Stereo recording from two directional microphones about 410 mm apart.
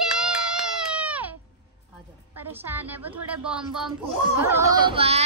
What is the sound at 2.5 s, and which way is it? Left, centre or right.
Speech, centre.